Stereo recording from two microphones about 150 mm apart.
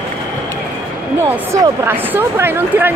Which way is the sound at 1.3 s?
15° right (ahead or behind).